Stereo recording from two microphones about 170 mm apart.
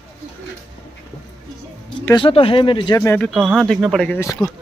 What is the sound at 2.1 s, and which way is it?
Speech, 30° left (ahead or behind).